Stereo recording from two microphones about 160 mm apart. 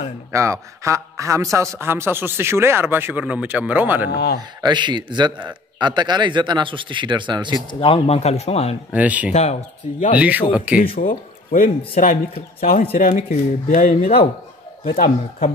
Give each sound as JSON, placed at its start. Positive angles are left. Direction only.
{"t": 0.3, "sound": "a man's voice", "side_deg": -20}
{"t": 4.1, "sound": "speech", "side_deg": 90}
{"t": 4.4, "sound": "a man's voice", "side_deg": -25}
{"t": 7.5, "sound": "speech", "side_deg": 35}
{"t": 8.9, "sound": "a man's voice", "side_deg": -10}
{"t": 9.3, "sound": "speech", "side_deg": 45}
{"t": 10.1, "sound": "a man's voice", "side_deg": -10}
{"t": 11.0, "sound": "speech", "side_deg": 60}